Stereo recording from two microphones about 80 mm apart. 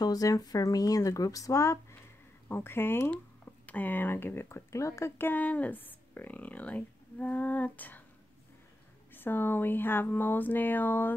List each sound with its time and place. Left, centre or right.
0.0 s speech: left
5.3 s speech: centre
9.1 s speech: left